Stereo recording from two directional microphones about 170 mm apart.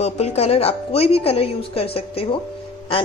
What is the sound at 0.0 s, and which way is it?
Speech, 40° left (ahead or behind).